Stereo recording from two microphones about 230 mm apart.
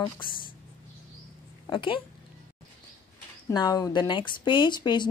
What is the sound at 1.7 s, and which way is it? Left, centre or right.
Speech, left.